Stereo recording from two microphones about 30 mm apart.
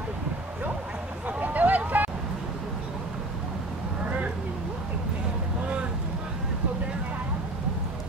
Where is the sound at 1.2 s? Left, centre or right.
Right.